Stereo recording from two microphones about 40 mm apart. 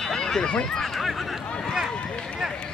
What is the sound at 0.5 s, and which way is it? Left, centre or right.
Speech, left.